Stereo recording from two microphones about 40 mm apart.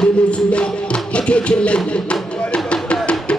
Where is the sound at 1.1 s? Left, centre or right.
Left.